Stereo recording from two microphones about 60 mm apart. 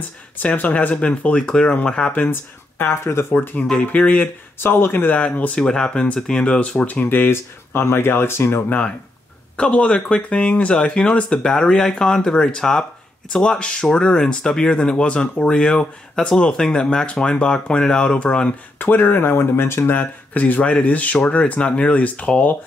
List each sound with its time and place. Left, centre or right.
0.4 s speech: left
2.8 s speech: left
3.8 s speech: left
4.6 s speech: left
5.6 s speech: centre; by 8.7 s left
9.6 s speech: centre
18.8 s speech: left
20.3 s speech: left